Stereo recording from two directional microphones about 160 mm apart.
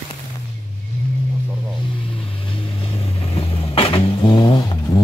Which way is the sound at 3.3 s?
40° left (ahead or behind).